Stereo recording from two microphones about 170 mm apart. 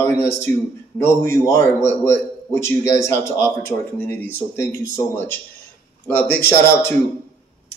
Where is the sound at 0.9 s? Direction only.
15° left (ahead or behind).